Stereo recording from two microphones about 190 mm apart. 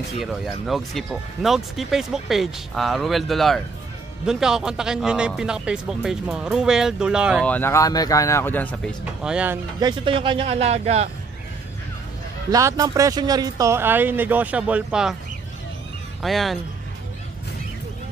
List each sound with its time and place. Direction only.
0.2 s speech: centre (ahead or behind)
7.4 s speech: 10° left (ahead or behind)
9.2 s speech: 5° right (ahead or behind)
9.8 s speech: 25° right (ahead or behind)
12.4 s speech: 20° right (ahead or behind)
16.2 s speech: centre (ahead or behind)